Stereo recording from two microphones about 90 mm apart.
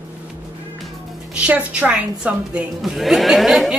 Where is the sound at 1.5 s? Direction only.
15° right (ahead or behind).